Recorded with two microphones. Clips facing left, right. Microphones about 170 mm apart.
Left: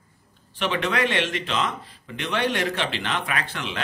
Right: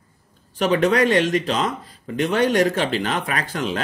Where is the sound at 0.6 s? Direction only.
40° right (ahead or behind).